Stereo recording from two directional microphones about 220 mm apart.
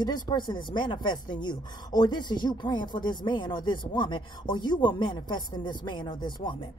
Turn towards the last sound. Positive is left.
turn(degrees=20)  # may be behind; listen again after turning